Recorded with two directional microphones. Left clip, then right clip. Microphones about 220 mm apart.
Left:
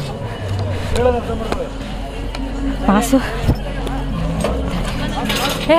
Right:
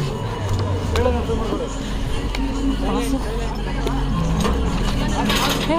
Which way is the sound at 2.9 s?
35° left (ahead or behind).